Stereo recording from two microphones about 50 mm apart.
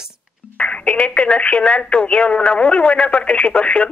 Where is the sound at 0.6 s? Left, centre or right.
Left.